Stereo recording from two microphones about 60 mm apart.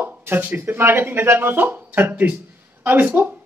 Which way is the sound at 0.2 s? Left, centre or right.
Right.